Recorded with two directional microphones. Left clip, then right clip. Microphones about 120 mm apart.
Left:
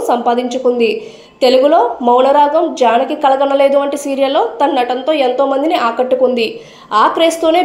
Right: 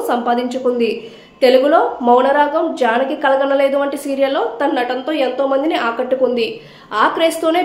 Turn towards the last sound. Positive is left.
turn(degrees=20)  # may be behind; listen again after turning